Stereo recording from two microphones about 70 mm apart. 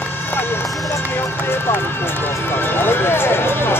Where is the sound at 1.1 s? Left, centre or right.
Left.